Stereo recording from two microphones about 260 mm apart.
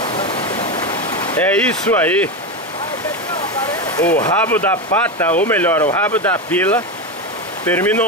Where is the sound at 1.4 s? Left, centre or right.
Centre.